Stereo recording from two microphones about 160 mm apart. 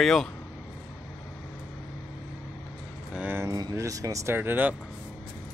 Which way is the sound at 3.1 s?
10° right (ahead or behind).